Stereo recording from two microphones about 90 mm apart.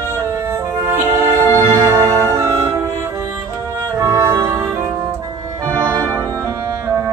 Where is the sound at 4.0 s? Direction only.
40° right (ahead or behind).